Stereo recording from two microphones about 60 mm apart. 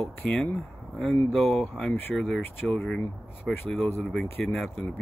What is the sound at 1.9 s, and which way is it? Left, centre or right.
Speech, left.